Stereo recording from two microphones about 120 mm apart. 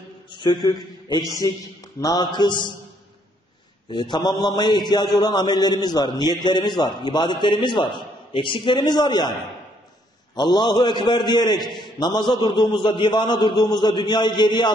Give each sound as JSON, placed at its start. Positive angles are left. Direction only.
{"t": 0.4, "sound": "a man's voice", "side_deg": 40}
{"t": 3.9, "sound": "a man's voice", "side_deg": 40}
{"t": 10.3, "sound": "a man's voice", "side_deg": 35}